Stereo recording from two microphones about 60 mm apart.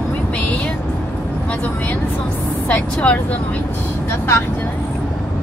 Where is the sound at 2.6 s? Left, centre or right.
Left.